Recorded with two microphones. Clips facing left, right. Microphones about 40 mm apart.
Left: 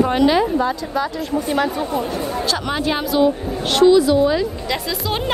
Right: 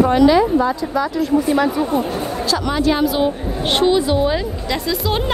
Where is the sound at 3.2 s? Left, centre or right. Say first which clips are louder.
Left 2 dB; right.